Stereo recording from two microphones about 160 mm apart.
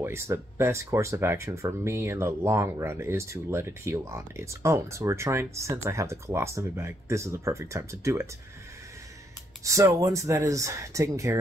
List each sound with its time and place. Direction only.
0.0 s speech: 15° right (ahead or behind)
9.7 s speech: 20° right (ahead or behind)